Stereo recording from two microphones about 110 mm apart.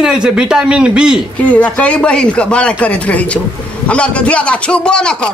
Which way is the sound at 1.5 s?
10° left (ahead or behind).